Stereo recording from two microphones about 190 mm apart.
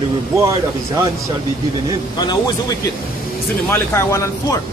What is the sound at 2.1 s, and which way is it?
A man's voice, 20° left (ahead or behind).